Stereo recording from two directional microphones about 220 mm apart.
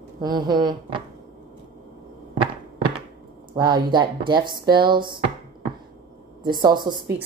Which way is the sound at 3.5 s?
20° right (ahead or behind).